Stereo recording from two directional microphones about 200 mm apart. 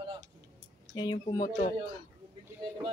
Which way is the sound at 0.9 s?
20° left (ahead or behind).